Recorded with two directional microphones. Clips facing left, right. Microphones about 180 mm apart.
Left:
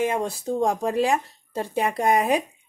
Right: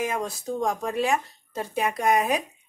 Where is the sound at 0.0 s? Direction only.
30° left (ahead or behind).